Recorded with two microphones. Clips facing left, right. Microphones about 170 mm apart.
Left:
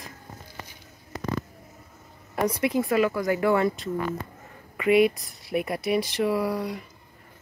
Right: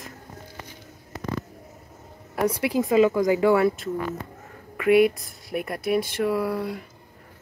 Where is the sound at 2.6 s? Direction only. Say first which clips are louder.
Right 4 dB; 15° right (ahead or behind); by 6.8 s centre (ahead or behind).